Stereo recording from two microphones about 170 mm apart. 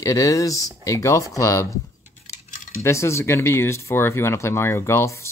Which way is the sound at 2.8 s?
15° left (ahead or behind).